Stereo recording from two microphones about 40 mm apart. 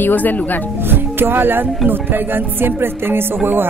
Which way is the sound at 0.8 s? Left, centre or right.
Right.